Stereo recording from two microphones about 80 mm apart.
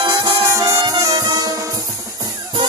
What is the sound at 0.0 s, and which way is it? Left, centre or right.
Music, right.